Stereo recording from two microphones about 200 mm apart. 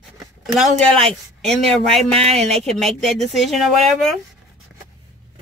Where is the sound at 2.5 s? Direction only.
Centre (ahead or behind).